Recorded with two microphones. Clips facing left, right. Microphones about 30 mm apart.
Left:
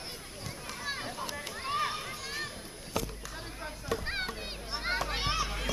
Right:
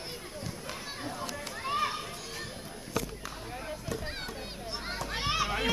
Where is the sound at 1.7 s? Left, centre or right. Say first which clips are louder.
Right 1 dB; centre.